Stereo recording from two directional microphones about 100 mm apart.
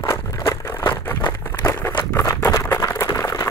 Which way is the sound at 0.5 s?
25° left (ahead or behind).